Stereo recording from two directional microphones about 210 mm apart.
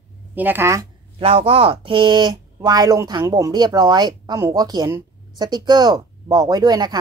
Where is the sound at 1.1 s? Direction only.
25° right (ahead or behind).